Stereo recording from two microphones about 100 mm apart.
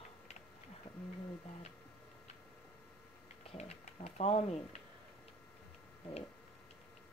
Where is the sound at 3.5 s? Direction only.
90° left.